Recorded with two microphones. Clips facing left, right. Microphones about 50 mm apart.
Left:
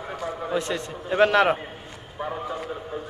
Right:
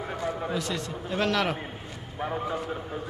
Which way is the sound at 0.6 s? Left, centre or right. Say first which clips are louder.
Left 4 dB; left.